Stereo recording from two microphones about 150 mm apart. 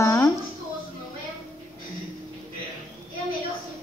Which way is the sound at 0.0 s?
20° left (ahead or behind).